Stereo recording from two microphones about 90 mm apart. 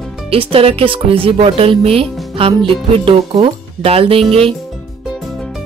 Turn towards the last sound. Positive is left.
turn(degrees=-90)